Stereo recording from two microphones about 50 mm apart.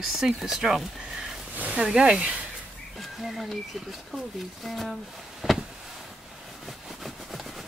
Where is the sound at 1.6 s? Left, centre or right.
Right.